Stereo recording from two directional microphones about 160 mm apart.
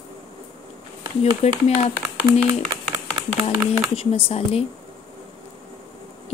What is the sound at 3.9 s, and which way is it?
Speech, 35° left (ahead or behind).